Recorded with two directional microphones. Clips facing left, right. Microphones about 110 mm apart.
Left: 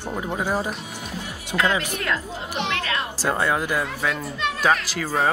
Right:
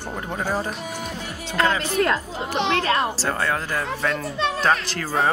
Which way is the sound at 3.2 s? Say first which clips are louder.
Left 2 dB; 15° left (ahead or behind).